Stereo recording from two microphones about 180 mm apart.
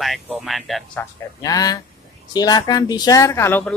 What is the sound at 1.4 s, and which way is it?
Speech, 20° left (ahead or behind).